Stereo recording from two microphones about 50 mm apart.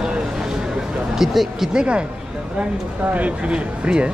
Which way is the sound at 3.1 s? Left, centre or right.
Right.